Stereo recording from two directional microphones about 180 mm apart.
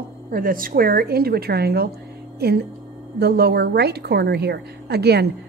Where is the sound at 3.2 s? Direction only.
65° right (ahead or behind).